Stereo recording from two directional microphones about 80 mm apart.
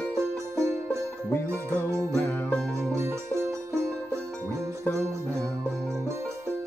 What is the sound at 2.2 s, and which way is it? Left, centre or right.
Music, left.